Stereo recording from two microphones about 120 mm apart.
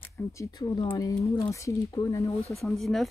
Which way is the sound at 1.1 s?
25° left (ahead or behind).